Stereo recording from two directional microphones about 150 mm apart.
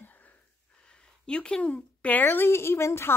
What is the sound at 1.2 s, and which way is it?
A woman's voice, 5° left (ahead or behind).